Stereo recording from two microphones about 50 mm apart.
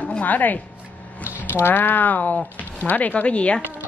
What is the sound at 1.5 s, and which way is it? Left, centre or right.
Speech, left.